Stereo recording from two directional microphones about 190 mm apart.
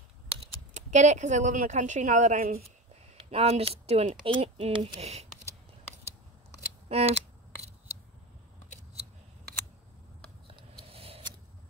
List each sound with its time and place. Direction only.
0.7 s speech: 40° right (ahead or behind)
3.3 s speech: 30° right (ahead or behind)
6.9 s scissors: 35° right (ahead or behind)
10.9 s scissors: 30° right (ahead or behind)